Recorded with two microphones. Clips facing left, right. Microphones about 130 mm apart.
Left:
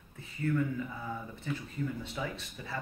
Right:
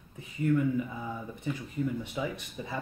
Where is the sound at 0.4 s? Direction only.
15° right (ahead or behind).